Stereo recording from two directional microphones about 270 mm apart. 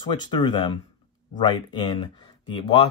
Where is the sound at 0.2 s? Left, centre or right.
Centre.